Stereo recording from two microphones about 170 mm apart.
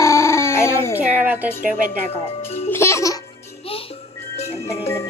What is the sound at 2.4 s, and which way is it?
Music, 35° left (ahead or behind).